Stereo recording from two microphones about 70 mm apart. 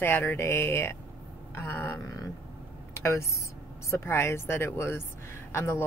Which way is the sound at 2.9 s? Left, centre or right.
Left.